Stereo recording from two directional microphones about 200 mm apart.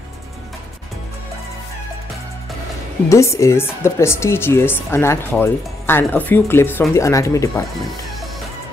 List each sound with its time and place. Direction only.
3.1 s speech: 15° left (ahead or behind)